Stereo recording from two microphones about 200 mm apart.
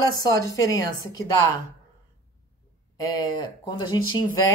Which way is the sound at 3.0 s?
20° left (ahead or behind).